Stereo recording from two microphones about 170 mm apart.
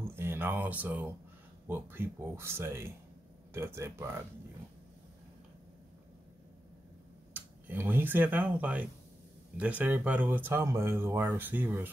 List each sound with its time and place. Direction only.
0.1 s speech: 15° right (ahead or behind)
7.3 s speech: 10° right (ahead or behind)